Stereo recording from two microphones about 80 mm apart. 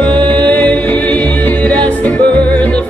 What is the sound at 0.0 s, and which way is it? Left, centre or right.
Music, centre.